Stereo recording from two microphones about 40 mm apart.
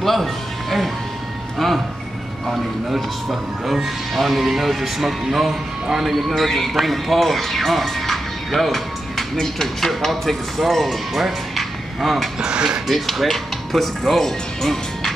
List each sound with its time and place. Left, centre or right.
0.0 s music: centre
2.5 s speech: centre
12.4 s speech: centre
12.8 s speech: centre